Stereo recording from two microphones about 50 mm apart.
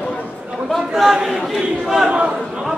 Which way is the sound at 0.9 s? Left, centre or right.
Centre.